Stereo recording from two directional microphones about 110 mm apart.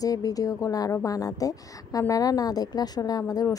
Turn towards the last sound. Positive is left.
turn(degrees=35)  # may be behind; listen again after turning